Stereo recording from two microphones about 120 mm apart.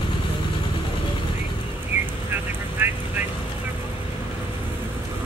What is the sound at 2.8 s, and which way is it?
Vehicle, 15° right (ahead or behind).